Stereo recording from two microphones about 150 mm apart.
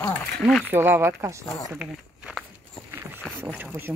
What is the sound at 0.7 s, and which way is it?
Speech, 15° right (ahead or behind).